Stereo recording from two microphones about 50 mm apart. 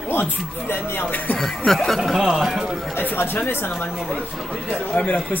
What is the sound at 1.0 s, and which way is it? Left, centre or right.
Speech, left.